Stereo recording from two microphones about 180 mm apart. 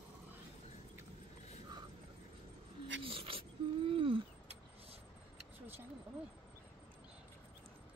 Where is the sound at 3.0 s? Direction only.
30° right (ahead or behind).